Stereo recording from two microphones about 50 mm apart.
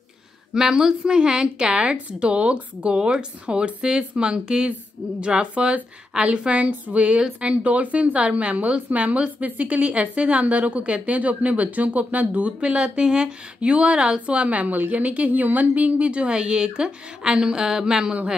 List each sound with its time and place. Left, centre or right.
0.6 s a woman's voice: centre